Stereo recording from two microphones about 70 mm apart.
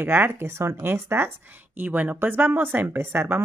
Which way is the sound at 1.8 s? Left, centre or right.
Right.